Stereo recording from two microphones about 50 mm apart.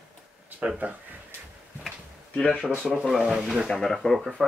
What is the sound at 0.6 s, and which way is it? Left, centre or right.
Speech, right.